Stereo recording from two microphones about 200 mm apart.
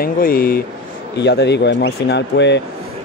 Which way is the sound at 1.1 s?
55° left (ahead or behind).